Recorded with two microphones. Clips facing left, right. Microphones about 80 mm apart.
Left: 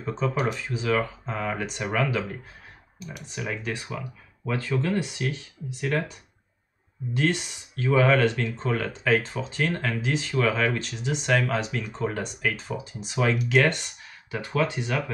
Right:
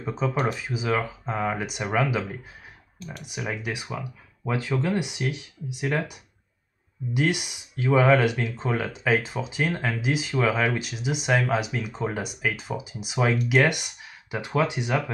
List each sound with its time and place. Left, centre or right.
0.0 s speech: centre
3.3 s speech: centre
7.2 s speech: centre